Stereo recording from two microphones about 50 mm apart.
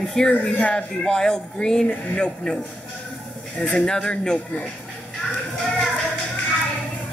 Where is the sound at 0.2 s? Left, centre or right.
Centre.